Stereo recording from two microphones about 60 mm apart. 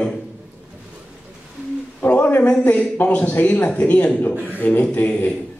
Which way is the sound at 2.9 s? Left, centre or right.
Left.